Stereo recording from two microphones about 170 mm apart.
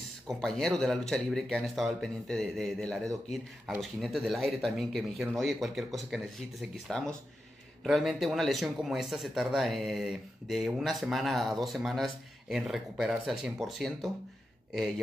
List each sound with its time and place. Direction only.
0.3 s a man's voice: centre (ahead or behind)